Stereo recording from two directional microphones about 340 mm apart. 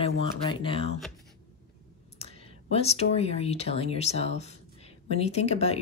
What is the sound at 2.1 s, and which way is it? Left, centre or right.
Speech, centre.